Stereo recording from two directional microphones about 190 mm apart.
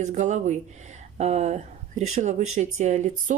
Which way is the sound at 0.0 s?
40° right (ahead or behind).